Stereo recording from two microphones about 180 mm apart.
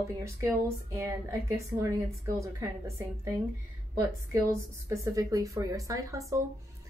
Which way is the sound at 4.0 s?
15° right (ahead or behind).